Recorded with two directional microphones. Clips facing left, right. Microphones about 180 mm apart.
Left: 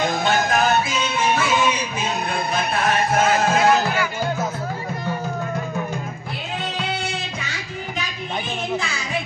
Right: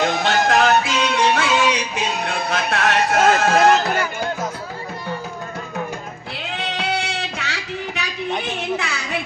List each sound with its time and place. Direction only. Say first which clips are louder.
0.0 s music: right 2 dB; 75° right (ahead or behind)
6.8 s music: right 2 dB; 75° right (ahead or behind)